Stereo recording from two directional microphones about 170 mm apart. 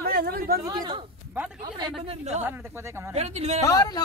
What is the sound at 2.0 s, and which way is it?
Speech, 40° right (ahead or behind).